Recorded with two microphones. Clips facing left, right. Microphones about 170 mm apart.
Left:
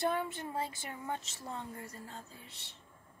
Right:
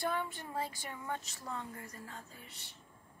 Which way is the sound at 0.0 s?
20° left (ahead or behind).